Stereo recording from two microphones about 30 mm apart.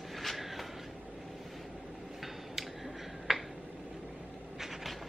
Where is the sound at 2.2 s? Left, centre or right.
Centre.